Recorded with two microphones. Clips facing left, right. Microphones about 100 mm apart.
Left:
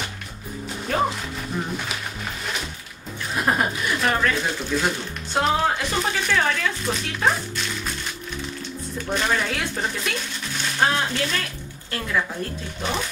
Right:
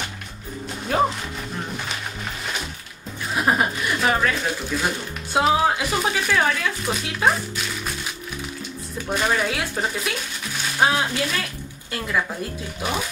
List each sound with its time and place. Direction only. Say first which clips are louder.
0.9 s speech: right 2 dB; 10° right (ahead or behind)
3.4 s speech: right 1 dB; 5° right (ahead or behind)
9.1 s speech: right 2 dB; 5° right (ahead or behind)